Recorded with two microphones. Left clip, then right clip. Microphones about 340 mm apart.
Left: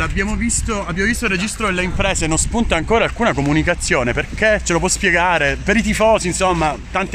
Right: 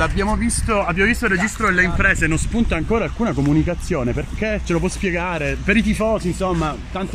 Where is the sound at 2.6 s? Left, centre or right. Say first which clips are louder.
Left 6 dB; left.